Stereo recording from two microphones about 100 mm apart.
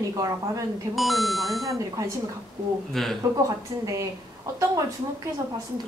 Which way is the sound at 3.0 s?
5° left (ahead or behind).